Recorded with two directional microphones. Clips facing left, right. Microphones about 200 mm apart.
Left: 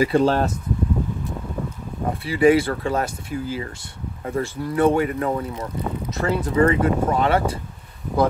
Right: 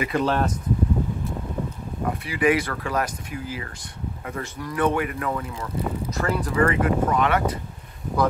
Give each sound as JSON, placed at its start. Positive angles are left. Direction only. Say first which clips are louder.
{"t": 0.0, "sound": "speech", "louder": "left 5 dB", "side_deg": 30}
{"t": 2.0, "sound": "speech", "louder": "left 5 dB", "side_deg": 30}